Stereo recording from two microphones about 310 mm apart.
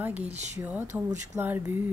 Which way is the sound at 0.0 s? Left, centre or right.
Centre.